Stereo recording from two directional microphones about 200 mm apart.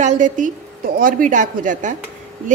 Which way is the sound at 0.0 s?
40° right (ahead or behind).